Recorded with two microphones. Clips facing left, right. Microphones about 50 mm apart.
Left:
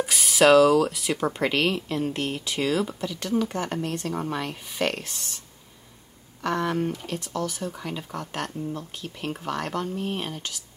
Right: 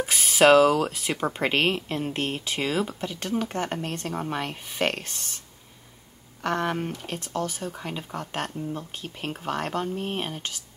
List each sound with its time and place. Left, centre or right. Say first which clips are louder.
0.0 s speech: even; right
3.0 s speech: left 2 dB; right
6.4 s speech: left 1 dB; right